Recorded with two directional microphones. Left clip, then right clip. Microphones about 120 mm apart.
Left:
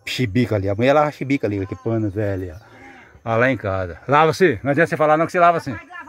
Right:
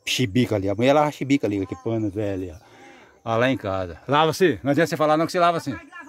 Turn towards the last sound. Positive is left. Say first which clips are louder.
# left 5 dB
turn(degrees=-20)  # may be behind; listen again after turning